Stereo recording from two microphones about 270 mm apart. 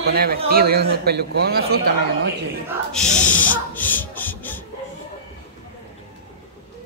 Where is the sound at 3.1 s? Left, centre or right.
Left.